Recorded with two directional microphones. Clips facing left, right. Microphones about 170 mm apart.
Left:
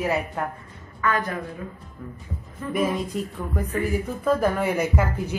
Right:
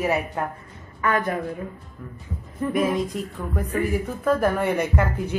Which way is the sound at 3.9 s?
Centre (ahead or behind).